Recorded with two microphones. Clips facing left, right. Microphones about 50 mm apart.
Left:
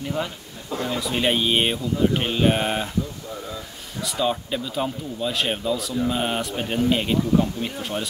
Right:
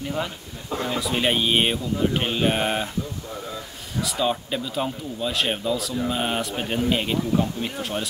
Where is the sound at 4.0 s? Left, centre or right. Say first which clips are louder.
Even; centre.